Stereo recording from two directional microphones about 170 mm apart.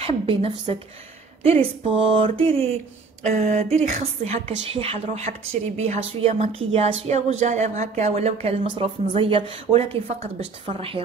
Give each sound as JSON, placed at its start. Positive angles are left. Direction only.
{"t": 0.0, "sound": "a woman's voice", "side_deg": -35}